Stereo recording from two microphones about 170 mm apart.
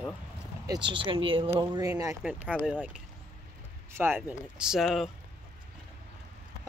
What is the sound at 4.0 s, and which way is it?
Speech, 10° right (ahead or behind).